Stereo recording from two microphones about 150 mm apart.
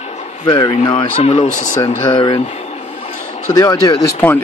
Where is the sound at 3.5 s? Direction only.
25° left (ahead or behind).